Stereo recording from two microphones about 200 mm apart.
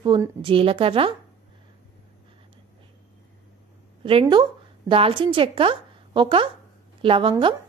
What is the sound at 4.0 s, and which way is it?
A woman's voice, 25° right (ahead or behind).